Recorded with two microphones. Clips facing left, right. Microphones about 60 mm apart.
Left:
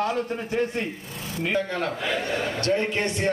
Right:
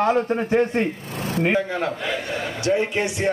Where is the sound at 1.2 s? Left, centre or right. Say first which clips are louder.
Right 8 dB; right.